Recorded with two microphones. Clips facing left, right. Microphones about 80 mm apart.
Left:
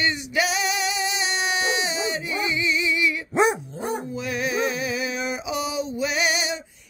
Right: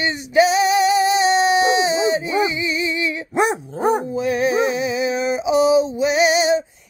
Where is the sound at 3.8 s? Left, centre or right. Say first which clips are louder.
Right 11 dB; right.